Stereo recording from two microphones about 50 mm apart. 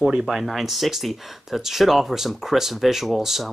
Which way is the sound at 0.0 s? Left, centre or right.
Centre.